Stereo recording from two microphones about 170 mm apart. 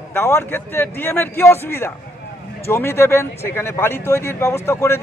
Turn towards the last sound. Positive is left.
turn(degrees=15)  # may be behind; listen again after turning